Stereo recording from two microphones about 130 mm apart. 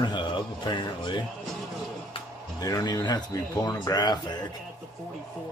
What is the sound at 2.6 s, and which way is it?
Speech, 30° left (ahead or behind).